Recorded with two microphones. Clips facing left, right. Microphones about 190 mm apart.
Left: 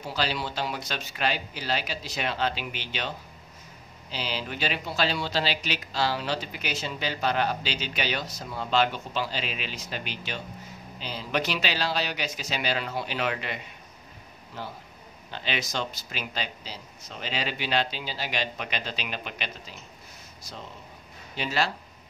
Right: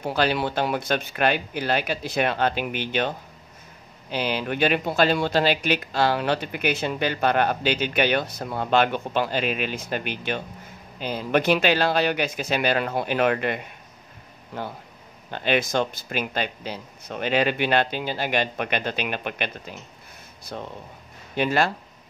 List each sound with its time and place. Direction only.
0.0 s speech: 55° right (ahead or behind)